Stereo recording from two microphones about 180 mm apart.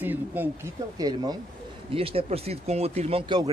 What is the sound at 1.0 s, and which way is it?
Speech, 20° right (ahead or behind).